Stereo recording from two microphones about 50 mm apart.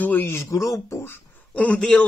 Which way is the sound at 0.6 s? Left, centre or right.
Left.